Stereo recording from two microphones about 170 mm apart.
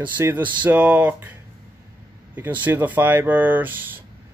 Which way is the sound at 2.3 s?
10° right (ahead or behind).